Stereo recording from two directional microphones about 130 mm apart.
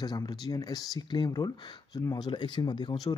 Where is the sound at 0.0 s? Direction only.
30° left (ahead or behind).